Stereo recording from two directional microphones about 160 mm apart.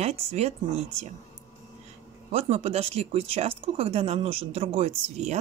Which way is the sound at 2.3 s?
40° right (ahead or behind).